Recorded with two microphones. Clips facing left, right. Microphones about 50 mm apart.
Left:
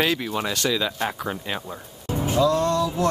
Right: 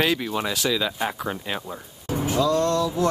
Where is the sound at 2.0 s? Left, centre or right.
Left.